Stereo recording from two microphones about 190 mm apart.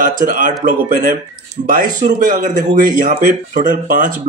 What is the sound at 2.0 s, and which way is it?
Speech, 45° right (ahead or behind).